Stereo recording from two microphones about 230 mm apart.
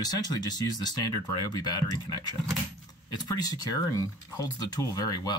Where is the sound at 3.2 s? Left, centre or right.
Centre.